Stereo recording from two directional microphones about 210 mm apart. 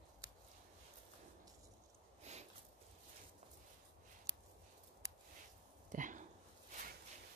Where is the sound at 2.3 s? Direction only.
35° right (ahead or behind).